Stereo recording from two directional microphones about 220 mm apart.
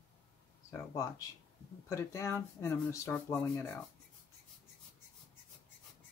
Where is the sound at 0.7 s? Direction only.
15° left (ahead or behind).